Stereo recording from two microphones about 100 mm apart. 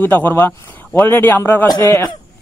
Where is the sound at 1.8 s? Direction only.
35° left (ahead or behind).